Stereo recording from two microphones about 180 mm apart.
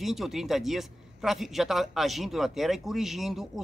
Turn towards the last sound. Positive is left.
turn(degrees=0)  # may be behind; listen again after turning